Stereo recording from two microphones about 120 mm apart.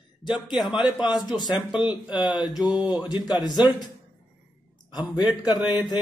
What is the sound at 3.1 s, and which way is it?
Speech, 35° left (ahead or behind).